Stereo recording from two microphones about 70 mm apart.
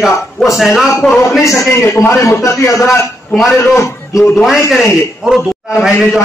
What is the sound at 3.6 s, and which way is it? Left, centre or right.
Speech, left.